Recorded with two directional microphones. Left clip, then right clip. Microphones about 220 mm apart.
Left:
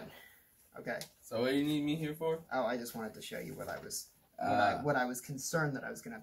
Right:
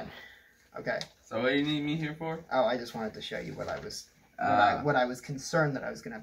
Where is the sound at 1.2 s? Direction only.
15° left (ahead or behind).